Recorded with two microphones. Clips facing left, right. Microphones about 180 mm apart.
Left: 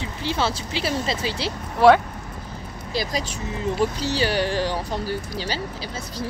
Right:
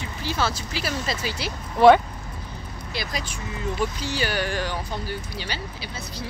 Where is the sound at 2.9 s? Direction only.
40° left (ahead or behind).